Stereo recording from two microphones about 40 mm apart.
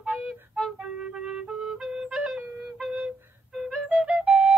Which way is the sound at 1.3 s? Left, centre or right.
Centre.